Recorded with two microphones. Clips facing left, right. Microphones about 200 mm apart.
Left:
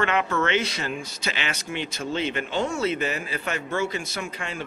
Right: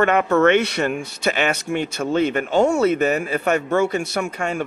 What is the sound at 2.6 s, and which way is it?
Speech, 70° right (ahead or behind).